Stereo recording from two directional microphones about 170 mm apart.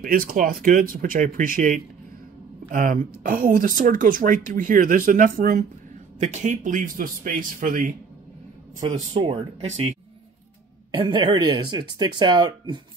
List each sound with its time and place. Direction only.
0.0 s speech: 55° right (ahead or behind)
6.1 s speech: 45° right (ahead or behind)
9.1 s speech: 30° right (ahead or behind)
11.0 s speech: 25° right (ahead or behind)